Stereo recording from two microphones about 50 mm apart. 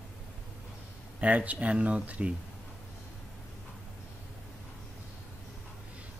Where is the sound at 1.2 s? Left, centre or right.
Right.